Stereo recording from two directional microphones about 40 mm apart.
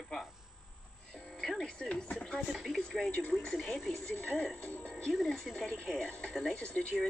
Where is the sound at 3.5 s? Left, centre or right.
Centre.